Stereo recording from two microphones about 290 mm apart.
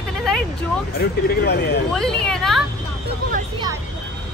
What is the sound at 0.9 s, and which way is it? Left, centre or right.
Speech, left.